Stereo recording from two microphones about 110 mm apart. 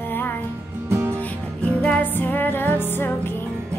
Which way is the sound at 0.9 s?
20° right (ahead or behind).